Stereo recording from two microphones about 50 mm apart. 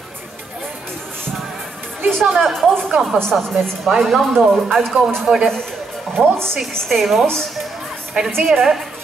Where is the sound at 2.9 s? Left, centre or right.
Centre.